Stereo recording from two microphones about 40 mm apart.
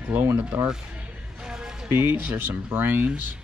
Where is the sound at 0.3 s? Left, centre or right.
Right.